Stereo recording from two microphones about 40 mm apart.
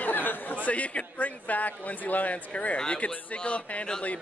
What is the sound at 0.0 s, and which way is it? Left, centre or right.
Speech, left.